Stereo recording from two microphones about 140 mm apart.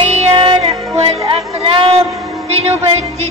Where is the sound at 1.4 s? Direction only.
45° right (ahead or behind).